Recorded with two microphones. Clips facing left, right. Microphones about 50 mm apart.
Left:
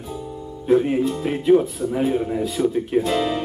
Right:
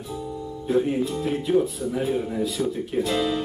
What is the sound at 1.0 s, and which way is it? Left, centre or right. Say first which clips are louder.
Speech: left 6 dB; left.